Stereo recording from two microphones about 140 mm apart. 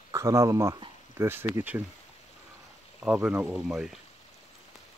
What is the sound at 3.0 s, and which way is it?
Speech, 10° right (ahead or behind).